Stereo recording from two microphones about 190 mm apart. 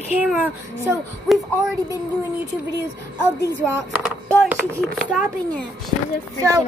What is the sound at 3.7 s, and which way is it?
A child's voice, 10° right (ahead or behind).